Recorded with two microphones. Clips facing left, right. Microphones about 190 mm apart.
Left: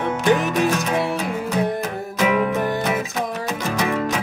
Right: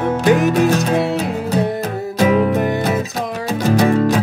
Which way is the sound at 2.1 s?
35° right (ahead or behind).